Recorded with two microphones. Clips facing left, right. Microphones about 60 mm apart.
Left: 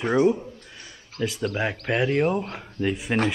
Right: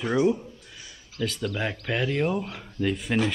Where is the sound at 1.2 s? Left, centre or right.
Left.